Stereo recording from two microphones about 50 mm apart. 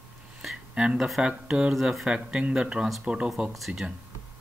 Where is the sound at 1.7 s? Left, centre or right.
Centre.